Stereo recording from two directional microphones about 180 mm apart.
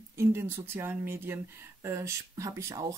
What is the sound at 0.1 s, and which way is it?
Speech, 15° right (ahead or behind).